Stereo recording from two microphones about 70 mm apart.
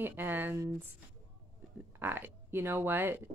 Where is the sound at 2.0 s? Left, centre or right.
Right.